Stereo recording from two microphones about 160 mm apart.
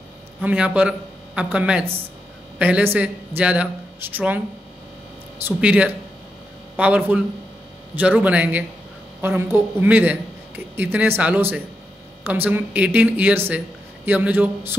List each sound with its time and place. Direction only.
0.4 s speech: 10° right (ahead or behind)
5.6 s speech: 10° right (ahead or behind)